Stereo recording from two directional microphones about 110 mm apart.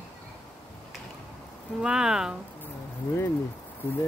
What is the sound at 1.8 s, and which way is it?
Speech, 5° right (ahead or behind).